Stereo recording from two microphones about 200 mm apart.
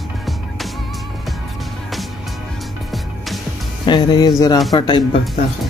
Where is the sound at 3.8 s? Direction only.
20° left (ahead or behind).